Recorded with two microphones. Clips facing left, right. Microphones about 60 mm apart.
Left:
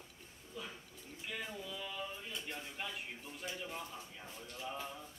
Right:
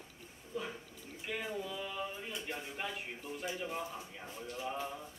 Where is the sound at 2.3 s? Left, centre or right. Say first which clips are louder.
Right 3 dB; centre.